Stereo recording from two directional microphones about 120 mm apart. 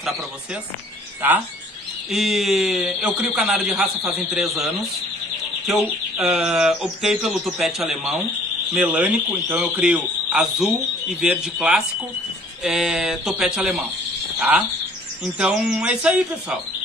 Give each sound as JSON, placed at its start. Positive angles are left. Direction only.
{"t": 1.2, "sound": "speech", "side_deg": -15}
{"t": 2.0, "sound": "speech", "side_deg": 0}
{"t": 6.2, "sound": "speech", "side_deg": -5}
{"t": 15.3, "sound": "speech", "side_deg": -10}